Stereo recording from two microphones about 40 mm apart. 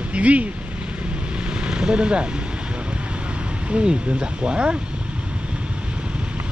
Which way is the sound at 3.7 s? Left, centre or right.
Right.